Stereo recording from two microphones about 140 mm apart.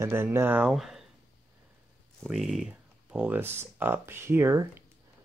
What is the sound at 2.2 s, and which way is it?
Speech, centre (ahead or behind).